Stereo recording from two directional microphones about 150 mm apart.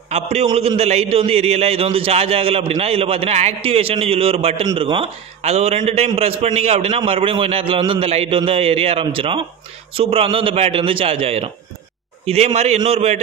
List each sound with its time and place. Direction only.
0.1 s a man's voice: 45° right (ahead or behind)
12.5 s a man's voice: 45° right (ahead or behind)